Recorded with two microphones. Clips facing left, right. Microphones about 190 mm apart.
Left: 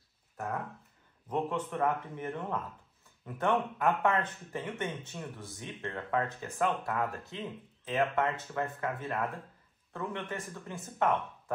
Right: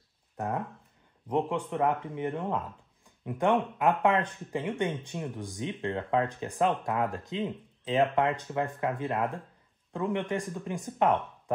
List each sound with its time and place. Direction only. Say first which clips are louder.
1.3 s speech: right 4 dB; 15° right (ahead or behind)